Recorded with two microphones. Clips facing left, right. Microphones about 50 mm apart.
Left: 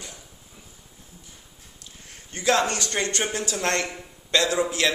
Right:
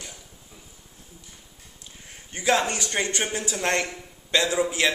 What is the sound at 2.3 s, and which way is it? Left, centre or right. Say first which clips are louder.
Speech: left 1 dB; centre.